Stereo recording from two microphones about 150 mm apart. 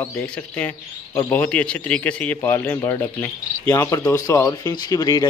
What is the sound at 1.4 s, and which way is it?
Speech, 10° left (ahead or behind).